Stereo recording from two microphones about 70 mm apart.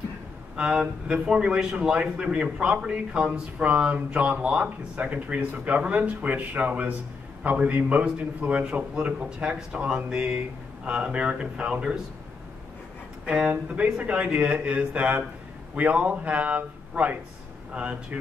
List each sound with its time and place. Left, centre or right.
0.6 s speech: centre
13.2 s a man's voice: centre